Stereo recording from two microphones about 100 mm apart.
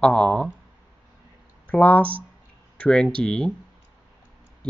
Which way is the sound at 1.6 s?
15° left (ahead or behind).